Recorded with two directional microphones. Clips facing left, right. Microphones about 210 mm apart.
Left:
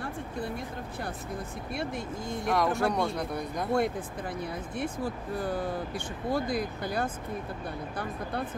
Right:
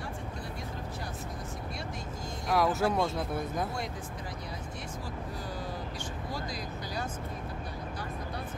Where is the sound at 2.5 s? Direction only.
5° right (ahead or behind).